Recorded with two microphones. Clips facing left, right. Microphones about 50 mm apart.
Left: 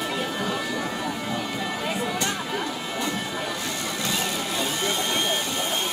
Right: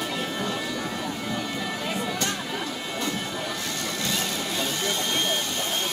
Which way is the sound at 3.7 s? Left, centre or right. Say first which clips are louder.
Left 1 dB; centre.